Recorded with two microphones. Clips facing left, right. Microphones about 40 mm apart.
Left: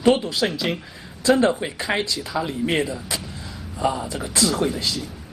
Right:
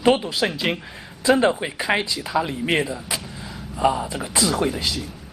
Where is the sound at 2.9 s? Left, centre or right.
Centre.